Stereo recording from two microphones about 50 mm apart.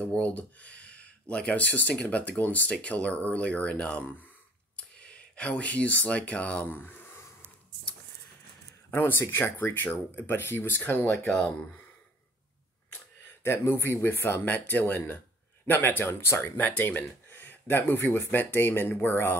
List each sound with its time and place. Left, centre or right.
0.0 s speech: left
6.7 s a sound: left
9.0 s speech: left
11.2 s speech: left
13.4 s speech: left
14.4 s speech: left
16.5 s speech: left